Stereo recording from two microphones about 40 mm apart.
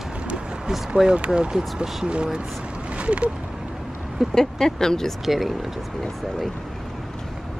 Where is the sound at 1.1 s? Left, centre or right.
Right.